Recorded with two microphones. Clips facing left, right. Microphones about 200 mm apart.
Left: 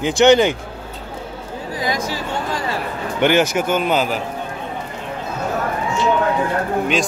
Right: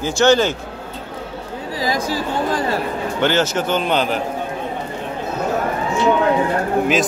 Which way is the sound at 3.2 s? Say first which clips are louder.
Left 3 dB; 15° left (ahead or behind).